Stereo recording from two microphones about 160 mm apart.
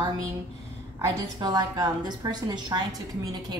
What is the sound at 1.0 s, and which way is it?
A woman's voice, 25° right (ahead or behind).